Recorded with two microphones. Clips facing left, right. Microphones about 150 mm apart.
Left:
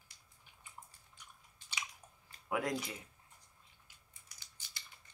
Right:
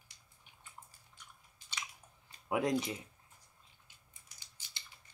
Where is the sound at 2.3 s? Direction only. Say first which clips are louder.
Right 4 dB; 20° right (ahead or behind).